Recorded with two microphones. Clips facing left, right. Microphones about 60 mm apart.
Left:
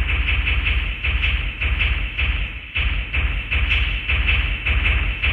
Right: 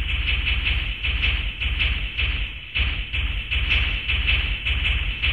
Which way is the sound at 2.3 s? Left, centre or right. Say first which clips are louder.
Left 2 dB; centre.